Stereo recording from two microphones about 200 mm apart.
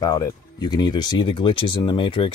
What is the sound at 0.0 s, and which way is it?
Speech, 15° left (ahead or behind).